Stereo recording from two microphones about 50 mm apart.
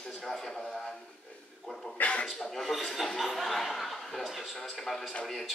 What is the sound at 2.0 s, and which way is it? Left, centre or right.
Speech, left.